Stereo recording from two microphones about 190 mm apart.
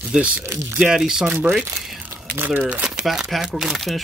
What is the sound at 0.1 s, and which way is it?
Speech, 5° right (ahead or behind).